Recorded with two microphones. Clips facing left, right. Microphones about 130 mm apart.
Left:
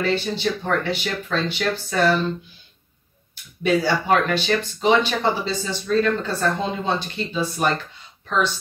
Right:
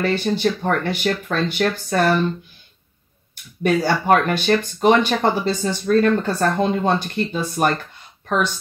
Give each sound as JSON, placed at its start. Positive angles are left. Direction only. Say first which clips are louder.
{"t": 0.0, "sound": "speech", "louder": "right 3 dB", "side_deg": -50}
{"t": 3.6, "sound": "speech", "louder": "right 2 dB", "side_deg": -50}